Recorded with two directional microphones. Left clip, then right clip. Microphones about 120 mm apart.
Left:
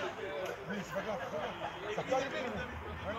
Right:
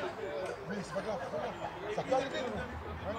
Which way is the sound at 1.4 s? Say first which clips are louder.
Right 1 dB; 50° left (ahead or behind).